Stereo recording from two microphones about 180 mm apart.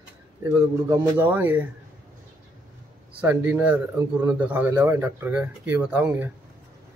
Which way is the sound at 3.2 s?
10° right (ahead or behind).